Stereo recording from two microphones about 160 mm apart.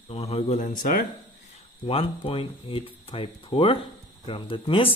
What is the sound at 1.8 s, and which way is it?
A man's voice, 35° left (ahead or behind).